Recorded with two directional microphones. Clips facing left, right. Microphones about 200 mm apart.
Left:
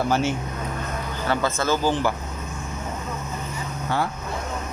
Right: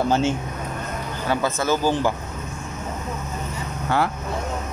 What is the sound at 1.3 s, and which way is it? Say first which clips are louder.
Speech: right 1 dB; 15° right (ahead or behind).